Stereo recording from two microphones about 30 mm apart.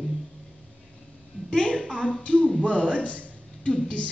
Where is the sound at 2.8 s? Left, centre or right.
Left.